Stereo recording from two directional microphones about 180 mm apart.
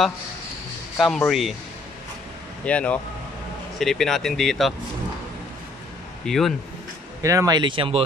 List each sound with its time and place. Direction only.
0.9 s speech: centre (ahead or behind)
2.6 s speech: 5° left (ahead or behind)
6.2 s speech: centre (ahead or behind)
7.2 s speech: 20° right (ahead or behind)